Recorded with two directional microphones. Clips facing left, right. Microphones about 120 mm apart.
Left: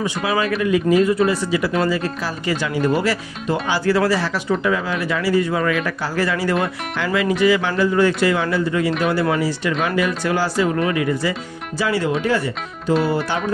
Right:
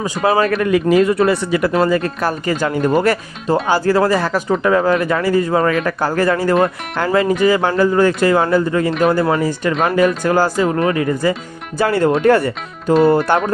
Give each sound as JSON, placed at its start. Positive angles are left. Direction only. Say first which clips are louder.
{"t": 0.0, "sound": "speech", "louder": "right 5 dB", "side_deg": -40}
{"t": 0.6, "sound": "speech", "louder": "right 3 dB", "side_deg": -60}
{"t": 11.8, "sound": "speech", "louder": "right 6 dB", "side_deg": -50}